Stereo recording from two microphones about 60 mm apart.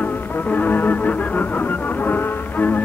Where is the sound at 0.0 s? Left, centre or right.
Left.